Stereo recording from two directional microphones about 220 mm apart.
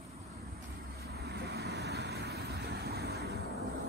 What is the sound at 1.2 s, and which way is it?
Vehicle, 45° right (ahead or behind).